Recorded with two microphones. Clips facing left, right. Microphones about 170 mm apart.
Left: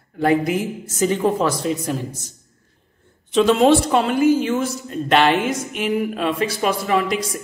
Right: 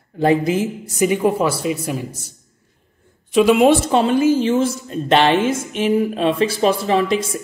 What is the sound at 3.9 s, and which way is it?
Speech, 25° right (ahead or behind).